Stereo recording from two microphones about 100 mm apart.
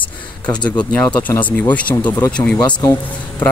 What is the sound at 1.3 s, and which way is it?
Speech, 15° left (ahead or behind).